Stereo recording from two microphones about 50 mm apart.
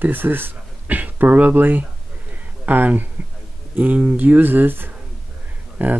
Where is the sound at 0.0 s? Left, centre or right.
Right.